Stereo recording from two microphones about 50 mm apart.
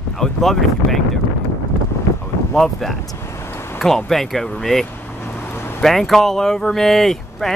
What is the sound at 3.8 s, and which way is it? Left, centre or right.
Speech, centre.